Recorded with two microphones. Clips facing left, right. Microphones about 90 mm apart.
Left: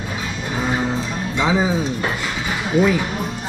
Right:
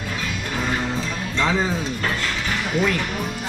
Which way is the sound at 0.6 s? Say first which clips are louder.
Left 3 dB; 10° left (ahead or behind).